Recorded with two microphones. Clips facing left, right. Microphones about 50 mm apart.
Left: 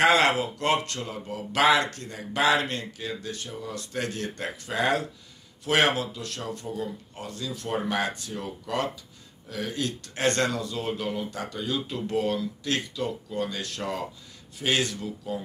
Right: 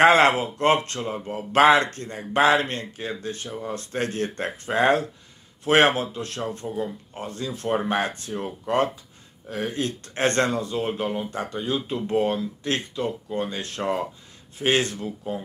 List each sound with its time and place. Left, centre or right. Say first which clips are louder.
0.0 s speech: right 4 dB; right